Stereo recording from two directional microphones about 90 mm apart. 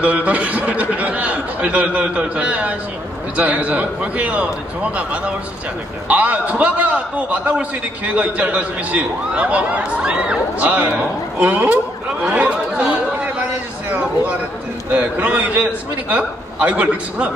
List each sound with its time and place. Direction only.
0.0 s a man's voice: 15° right (ahead or behind)
12.2 s chatter: 15° right (ahead or behind)
13.9 s a man's voice: 15° right (ahead or behind)